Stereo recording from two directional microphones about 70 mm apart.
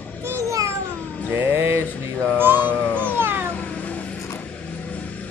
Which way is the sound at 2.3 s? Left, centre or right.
Right.